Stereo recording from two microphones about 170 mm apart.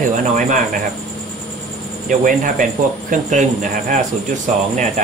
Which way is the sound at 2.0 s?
50° right (ahead or behind).